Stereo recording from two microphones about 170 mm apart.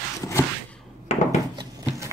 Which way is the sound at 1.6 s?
20° right (ahead or behind).